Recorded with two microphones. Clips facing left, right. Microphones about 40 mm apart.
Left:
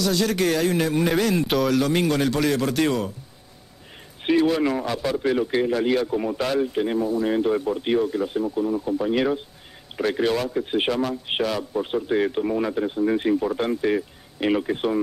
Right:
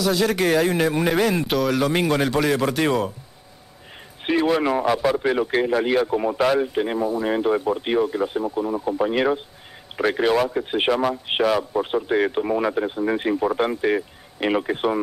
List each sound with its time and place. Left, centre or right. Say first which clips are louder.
0.0 s speech: right 2 dB; centre
1.7 s speech: right 1 dB; centre
4.3 s speech: even; centre